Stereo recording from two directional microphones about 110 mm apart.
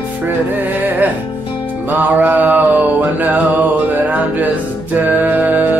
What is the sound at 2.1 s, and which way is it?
Music, 15° right (ahead or behind).